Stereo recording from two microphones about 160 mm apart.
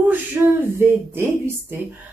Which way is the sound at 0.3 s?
15° right (ahead or behind).